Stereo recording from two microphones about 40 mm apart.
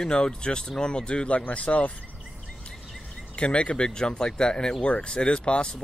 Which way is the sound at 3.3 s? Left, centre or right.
Left.